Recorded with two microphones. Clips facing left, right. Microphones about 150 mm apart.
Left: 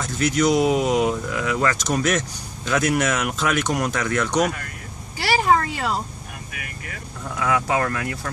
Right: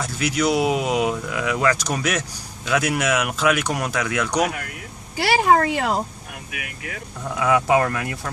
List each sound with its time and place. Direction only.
0.0 s speech: 10° right (ahead or behind)
5.1 s a sound: 55° right (ahead or behind)
6.5 s speech: 65° right (ahead or behind)
7.3 s speech: 15° right (ahead or behind)